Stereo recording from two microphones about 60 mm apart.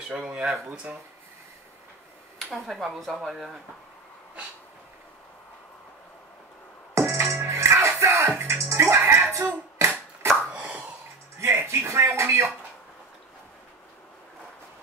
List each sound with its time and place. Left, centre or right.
0.1 s speech: right
2.5 s speech: centre
7.0 s music: right
10.5 s plop: right
11.3 s a sound: right